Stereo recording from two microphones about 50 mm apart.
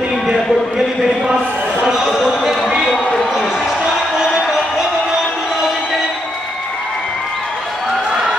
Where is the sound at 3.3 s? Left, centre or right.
Centre.